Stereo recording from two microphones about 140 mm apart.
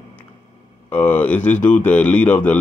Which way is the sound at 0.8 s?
10° left (ahead or behind).